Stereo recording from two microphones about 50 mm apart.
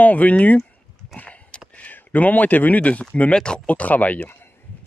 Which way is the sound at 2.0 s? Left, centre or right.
Left.